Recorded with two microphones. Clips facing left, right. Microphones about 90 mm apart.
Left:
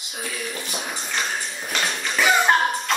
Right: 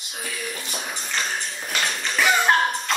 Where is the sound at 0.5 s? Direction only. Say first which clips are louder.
Left 2 dB; 15° left (ahead or behind).